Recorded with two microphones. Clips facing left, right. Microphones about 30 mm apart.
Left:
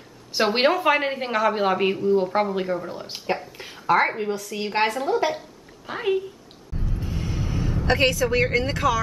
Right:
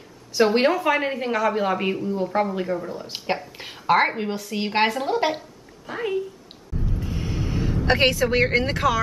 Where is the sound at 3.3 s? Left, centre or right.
Right.